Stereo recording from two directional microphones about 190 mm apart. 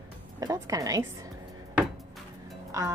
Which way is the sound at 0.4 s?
20° right (ahead or behind).